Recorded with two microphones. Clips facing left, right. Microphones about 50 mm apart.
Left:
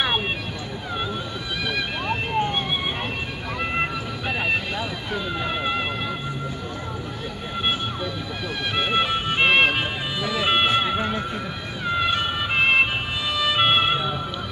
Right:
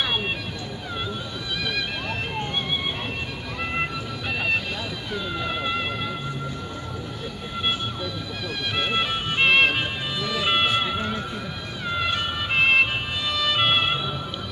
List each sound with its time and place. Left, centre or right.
1.7 s music: centre
3.7 s music: centre
5.1 s a sound: centre
8.7 s music: centre